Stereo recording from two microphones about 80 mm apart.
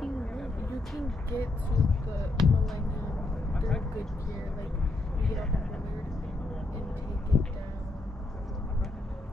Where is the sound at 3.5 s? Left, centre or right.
Centre.